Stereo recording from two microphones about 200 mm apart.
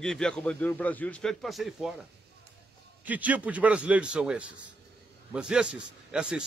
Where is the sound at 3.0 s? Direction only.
10° right (ahead or behind).